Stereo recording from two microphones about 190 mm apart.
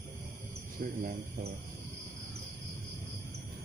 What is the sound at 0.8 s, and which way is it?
Speech, 50° right (ahead or behind).